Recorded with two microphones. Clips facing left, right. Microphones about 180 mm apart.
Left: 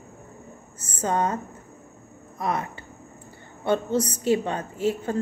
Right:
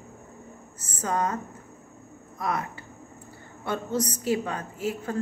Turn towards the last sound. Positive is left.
turn(degrees=30)  # may be behind; listen again after turning